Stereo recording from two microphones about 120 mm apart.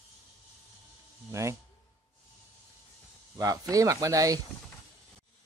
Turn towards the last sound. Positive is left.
turn(degrees=-30)  # may be behind; listen again after turning